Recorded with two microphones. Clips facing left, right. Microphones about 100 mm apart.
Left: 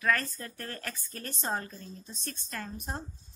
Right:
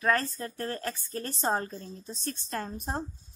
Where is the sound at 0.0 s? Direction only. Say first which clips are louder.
Right 3 dB; 30° right (ahead or behind).